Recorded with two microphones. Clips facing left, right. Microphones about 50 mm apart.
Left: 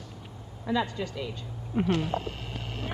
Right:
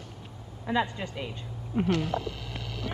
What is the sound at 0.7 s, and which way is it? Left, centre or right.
Speech, right.